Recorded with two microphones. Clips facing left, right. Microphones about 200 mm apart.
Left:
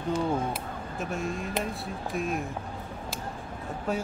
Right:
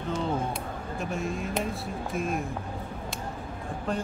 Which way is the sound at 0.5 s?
Centre (ahead or behind).